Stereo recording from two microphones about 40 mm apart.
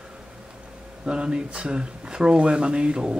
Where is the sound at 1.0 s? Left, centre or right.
Right.